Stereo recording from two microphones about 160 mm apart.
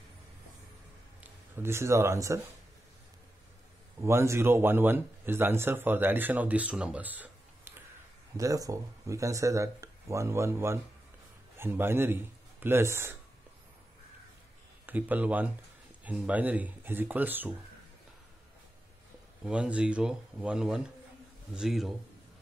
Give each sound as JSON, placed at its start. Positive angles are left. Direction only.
{"t": 1.2, "sound": "speech", "side_deg": -15}
{"t": 4.0, "sound": "a man's voice", "side_deg": -15}
{"t": 8.4, "sound": "a man's voice", "side_deg": -20}
{"t": 14.9, "sound": "a man's voice", "side_deg": -10}
{"t": 19.4, "sound": "a man's voice", "side_deg": -5}